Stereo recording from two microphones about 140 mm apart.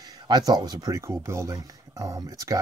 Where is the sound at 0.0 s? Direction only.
30° right (ahead or behind).